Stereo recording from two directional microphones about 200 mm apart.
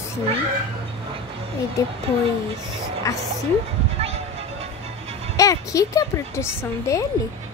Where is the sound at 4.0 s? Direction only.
30° right (ahead or behind).